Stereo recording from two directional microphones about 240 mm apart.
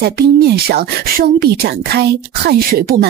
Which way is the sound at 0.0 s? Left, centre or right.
Right.